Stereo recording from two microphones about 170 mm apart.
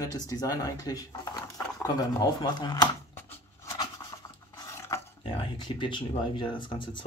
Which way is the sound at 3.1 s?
15° left (ahead or behind).